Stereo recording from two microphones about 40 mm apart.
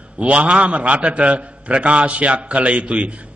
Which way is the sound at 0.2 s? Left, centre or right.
Right.